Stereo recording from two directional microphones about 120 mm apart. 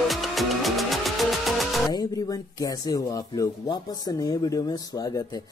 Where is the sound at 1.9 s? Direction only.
30° left (ahead or behind).